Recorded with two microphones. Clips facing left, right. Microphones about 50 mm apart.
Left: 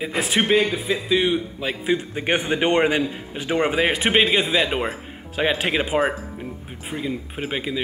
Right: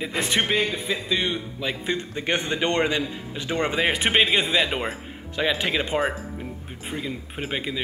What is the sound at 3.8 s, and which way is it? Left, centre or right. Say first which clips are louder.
Speech: left 2 dB; centre.